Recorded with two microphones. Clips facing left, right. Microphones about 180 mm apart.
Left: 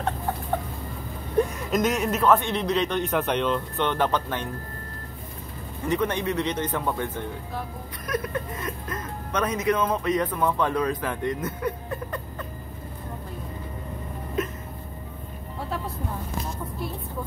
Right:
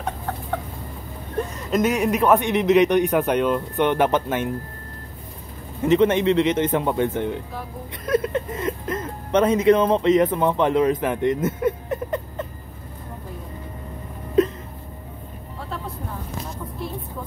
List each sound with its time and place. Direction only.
1.7 s a man's voice: 10° right (ahead or behind)
5.9 s speech: 25° right (ahead or behind)